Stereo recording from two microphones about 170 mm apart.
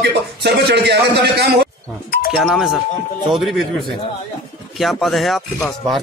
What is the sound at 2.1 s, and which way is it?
Speech, 60° left (ahead or behind).